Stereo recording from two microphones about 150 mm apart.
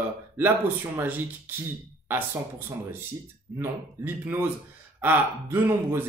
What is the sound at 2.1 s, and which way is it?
Speech, 15° right (ahead or behind).